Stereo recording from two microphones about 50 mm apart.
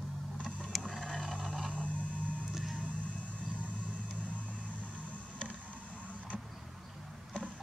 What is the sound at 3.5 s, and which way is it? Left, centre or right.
Vehicle, right.